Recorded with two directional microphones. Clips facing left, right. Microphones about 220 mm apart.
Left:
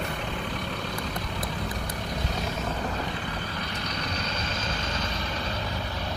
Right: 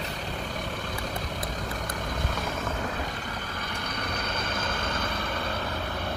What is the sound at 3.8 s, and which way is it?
Vehicle, 55° right (ahead or behind).